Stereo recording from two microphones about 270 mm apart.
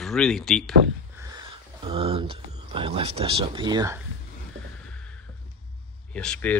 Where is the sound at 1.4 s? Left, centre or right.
Right.